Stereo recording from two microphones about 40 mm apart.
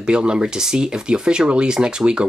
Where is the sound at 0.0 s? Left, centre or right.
Right.